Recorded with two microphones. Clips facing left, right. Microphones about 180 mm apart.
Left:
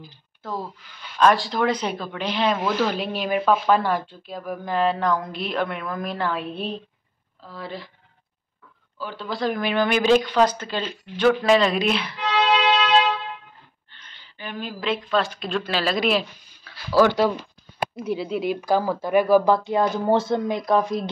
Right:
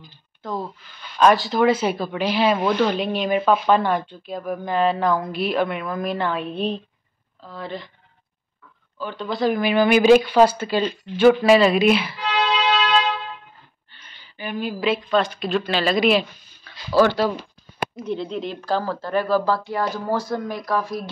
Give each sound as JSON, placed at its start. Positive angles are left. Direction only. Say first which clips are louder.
{"t": 0.0, "sound": "speech", "louder": "right 2 dB", "side_deg": 5}
{"t": 8.9, "sound": "speech", "louder": "right 3 dB", "side_deg": 5}
{"t": 14.0, "sound": "a woman's voice", "louder": "right 4 dB", "side_deg": -10}
{"t": 16.9, "sound": "speech", "louder": "even", "side_deg": 15}